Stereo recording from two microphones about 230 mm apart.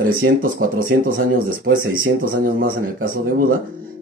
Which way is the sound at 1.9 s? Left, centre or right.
Right.